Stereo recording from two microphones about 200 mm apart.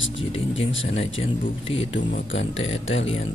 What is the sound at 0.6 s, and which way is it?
Speech, 70° left (ahead or behind).